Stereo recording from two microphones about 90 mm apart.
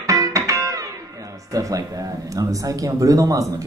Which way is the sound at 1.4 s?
40° right (ahead or behind).